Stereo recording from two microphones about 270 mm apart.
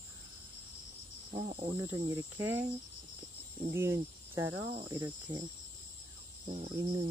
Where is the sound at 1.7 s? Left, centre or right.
Centre.